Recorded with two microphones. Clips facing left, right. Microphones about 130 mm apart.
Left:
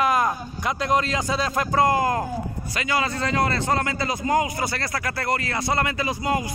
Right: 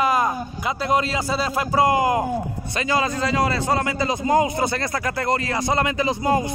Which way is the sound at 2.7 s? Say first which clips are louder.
Right 3 dB; 25° right (ahead or behind).